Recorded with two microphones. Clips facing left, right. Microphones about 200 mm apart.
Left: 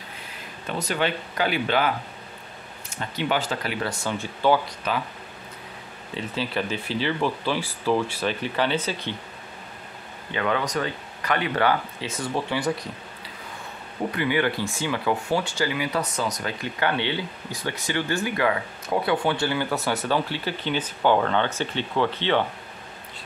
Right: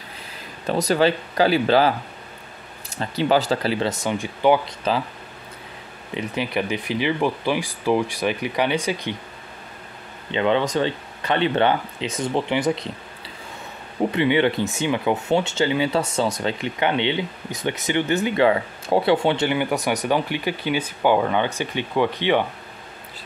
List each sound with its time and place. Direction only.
0.7 s speech: 35° right (ahead or behind); by 4.7 s 15° right (ahead or behind)
6.1 s speech: 15° right (ahead or behind)
10.3 s speech: 25° right (ahead or behind)
14.1 s speech: 25° right (ahead or behind)